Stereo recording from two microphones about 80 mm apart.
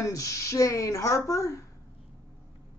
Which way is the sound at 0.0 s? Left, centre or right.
Left.